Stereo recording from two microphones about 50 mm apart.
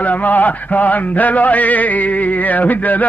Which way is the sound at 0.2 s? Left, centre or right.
Left.